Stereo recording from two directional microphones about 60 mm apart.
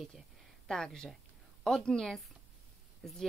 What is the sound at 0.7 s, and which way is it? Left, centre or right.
A woman's voice, centre.